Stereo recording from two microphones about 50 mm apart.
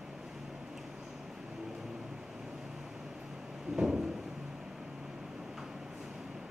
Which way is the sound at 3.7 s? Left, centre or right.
Centre.